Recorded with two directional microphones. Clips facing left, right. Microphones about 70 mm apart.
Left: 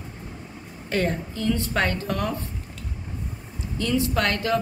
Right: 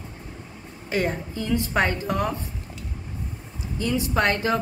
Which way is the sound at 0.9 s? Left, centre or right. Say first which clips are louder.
Even; centre.